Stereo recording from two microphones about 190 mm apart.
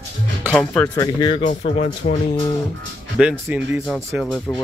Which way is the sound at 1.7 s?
40° left (ahead or behind).